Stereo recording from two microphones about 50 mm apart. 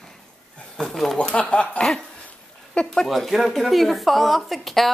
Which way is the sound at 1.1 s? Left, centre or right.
Left.